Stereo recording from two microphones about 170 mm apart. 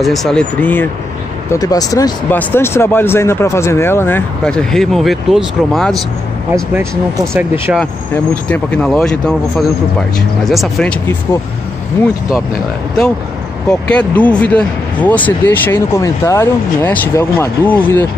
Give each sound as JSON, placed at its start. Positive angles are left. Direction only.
{"t": 0.0, "sound": "speech", "side_deg": 0}
{"t": 1.5, "sound": "speech", "side_deg": 20}
{"t": 6.5, "sound": "speech", "side_deg": -15}
{"t": 8.5, "sound": "speech", "side_deg": 5}
{"t": 13.7, "sound": "speech", "side_deg": 5}